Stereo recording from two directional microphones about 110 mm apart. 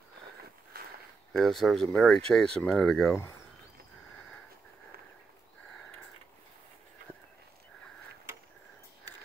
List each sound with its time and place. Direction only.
1.3 s speech: centre (ahead or behind)
3.1 s speech: 25° left (ahead or behind)